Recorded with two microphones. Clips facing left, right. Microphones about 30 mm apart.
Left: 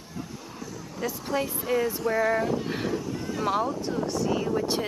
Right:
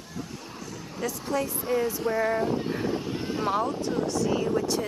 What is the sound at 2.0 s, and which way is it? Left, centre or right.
Speech, centre.